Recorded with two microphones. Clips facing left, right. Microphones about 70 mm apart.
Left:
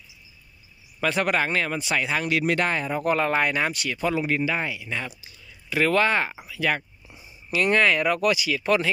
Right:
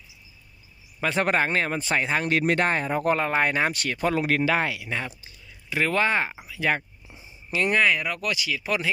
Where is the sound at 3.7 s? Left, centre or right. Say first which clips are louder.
Right 1 dB; right.